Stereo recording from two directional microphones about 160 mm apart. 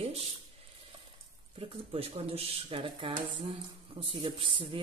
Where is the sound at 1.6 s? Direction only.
35° right (ahead or behind).